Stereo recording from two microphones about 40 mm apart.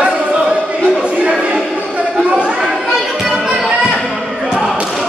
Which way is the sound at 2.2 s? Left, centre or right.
Right.